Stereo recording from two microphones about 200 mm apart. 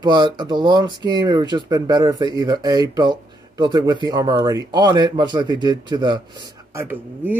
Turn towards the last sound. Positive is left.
turn(degrees=-10)  # may be behind; listen again after turning